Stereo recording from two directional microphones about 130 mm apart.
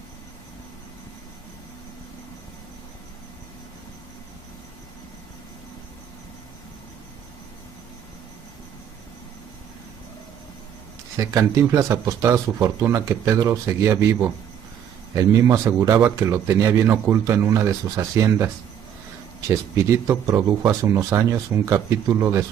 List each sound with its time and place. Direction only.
11.1 s speech: 25° right (ahead or behind)
15.1 s speech: 25° right (ahead or behind)